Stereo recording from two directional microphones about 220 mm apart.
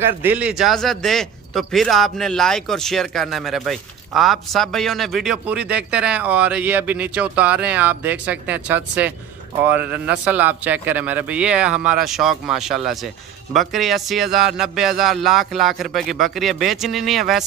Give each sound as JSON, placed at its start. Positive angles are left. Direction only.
{"t": 0.0, "sound": "a man's voice", "side_deg": -10}